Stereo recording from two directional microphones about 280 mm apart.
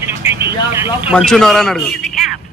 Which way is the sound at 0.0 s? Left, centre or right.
Centre.